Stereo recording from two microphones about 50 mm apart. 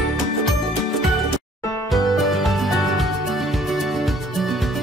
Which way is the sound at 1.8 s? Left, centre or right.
Centre.